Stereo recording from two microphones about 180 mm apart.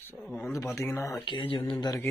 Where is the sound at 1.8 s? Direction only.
15° left (ahead or behind).